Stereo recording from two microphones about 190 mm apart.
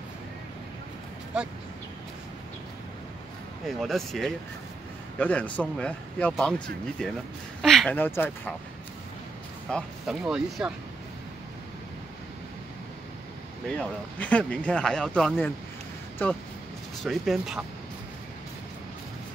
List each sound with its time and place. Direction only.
3.6 s speech: centre (ahead or behind)
9.7 s speech: centre (ahead or behind)
13.7 s speech: 5° left (ahead or behind)
17.0 s speech: centre (ahead or behind)